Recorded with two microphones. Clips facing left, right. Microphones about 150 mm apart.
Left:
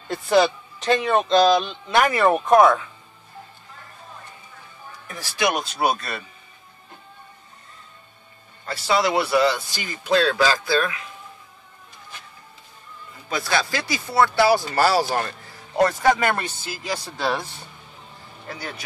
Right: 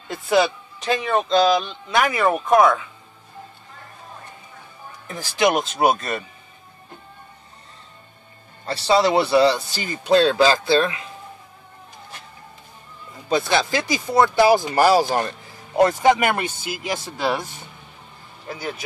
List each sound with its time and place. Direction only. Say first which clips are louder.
0.1 s speech: left 1 dB; centre (ahead or behind)
5.0 s speech: right 4 dB; 25° right (ahead or behind)
8.6 s speech: right 4 dB; 30° right (ahead or behind)
13.3 s speech: right 4 dB; 20° right (ahead or behind)